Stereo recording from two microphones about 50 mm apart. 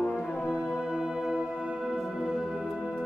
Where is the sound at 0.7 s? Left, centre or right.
Centre.